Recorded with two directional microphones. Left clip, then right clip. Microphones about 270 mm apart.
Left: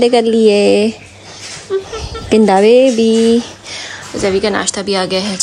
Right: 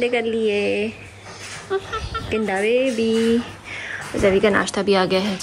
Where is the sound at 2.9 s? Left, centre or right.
Centre.